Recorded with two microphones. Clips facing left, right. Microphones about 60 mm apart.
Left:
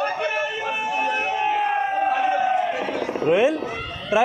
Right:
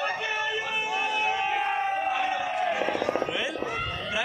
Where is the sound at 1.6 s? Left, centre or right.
Centre.